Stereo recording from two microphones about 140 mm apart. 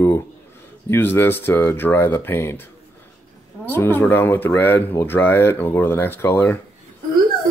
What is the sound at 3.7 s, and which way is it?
Speech, 15° left (ahead or behind).